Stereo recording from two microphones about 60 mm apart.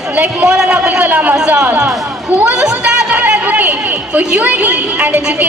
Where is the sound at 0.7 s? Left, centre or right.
Right.